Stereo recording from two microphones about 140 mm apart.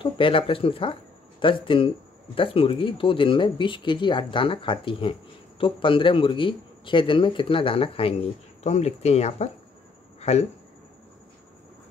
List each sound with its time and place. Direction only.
0.0 s a man's voice: 40° left (ahead or behind)